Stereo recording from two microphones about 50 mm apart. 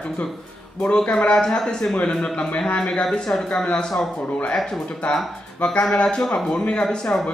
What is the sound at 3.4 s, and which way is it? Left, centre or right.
Speech, centre.